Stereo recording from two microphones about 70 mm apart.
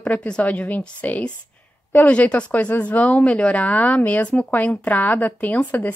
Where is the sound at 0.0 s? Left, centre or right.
Centre.